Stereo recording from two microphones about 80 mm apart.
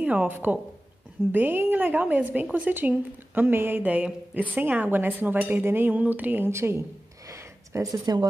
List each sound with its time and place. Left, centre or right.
0.0 s a woman's voice: centre
7.2 s a sound: right
8.0 s speech: right